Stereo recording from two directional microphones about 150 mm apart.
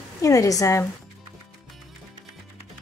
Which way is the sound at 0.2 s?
20° left (ahead or behind).